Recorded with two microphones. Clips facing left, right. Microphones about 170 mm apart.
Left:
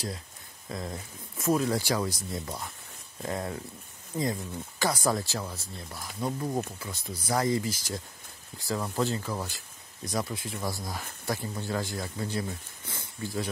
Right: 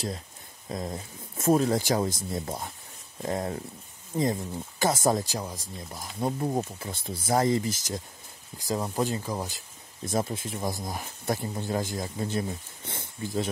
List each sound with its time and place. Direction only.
0.7 s speech: 20° right (ahead or behind)